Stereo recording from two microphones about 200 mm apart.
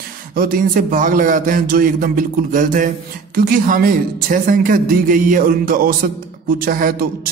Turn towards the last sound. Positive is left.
turn(degrees=-45)  # may be behind; listen again after turning